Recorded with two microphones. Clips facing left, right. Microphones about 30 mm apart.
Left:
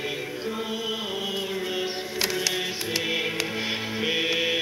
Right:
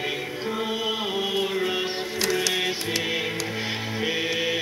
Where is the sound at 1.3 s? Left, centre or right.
Centre.